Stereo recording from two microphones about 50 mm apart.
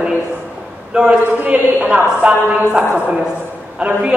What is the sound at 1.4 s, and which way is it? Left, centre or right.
Speech, right.